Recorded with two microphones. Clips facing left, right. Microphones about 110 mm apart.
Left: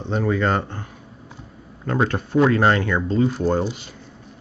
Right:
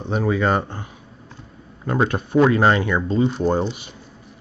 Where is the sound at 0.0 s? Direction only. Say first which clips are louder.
Right 1 dB; 10° right (ahead or behind).